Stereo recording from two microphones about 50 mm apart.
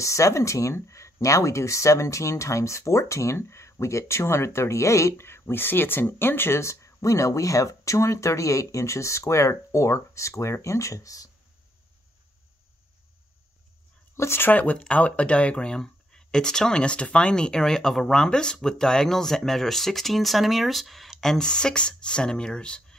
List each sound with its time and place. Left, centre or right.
0.0 s speech: left
14.1 s speech: left
14.4 s speech: left; by 22.9 s centre